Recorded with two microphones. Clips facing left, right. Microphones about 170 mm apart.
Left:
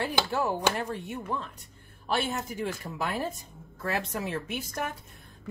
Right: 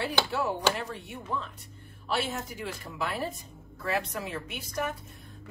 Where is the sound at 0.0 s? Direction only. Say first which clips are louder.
Left 1 dB; 50° left (ahead or behind).